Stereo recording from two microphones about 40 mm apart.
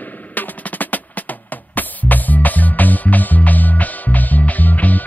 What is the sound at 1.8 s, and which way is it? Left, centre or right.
Music, left.